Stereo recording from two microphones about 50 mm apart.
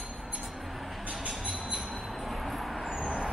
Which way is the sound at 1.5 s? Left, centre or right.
Centre.